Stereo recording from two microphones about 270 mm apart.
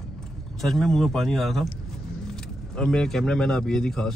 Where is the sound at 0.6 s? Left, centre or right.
Centre.